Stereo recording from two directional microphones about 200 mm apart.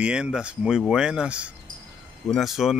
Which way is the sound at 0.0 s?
5° right (ahead or behind).